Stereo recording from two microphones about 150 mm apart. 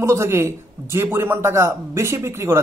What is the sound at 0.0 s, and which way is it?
Speech, 20° right (ahead or behind).